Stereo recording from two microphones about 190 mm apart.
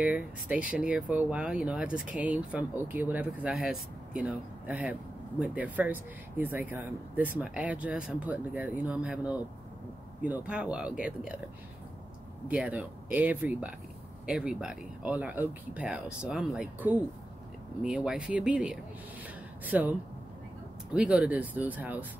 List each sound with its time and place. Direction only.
0.0 s speech: 5° right (ahead or behind)
12.4 s speech: 5° right (ahead or behind)